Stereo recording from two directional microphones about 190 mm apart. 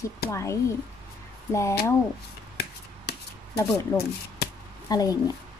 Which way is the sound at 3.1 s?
60° left (ahead or behind).